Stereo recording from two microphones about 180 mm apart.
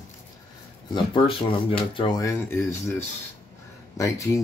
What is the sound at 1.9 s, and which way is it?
Speech, 25° left (ahead or behind).